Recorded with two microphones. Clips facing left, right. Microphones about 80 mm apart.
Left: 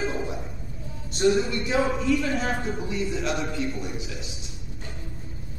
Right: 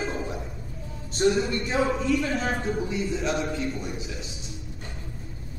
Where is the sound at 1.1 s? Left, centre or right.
Right.